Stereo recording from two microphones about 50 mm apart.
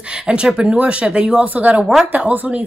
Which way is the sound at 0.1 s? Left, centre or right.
Centre.